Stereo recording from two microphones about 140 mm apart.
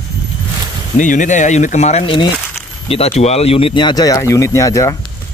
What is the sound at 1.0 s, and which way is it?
Speech, 65° left (ahead or behind).